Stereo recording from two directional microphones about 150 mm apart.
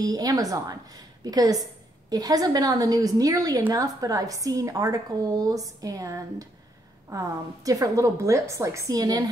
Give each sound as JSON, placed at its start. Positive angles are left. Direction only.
{"t": 0.0, "sound": "speech", "side_deg": -25}